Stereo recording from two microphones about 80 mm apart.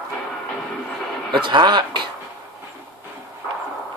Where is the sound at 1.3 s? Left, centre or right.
Right.